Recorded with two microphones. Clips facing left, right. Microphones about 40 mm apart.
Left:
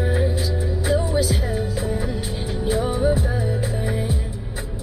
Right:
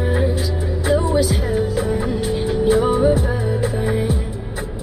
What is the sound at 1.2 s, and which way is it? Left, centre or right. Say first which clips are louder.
Music: right 4 dB; right.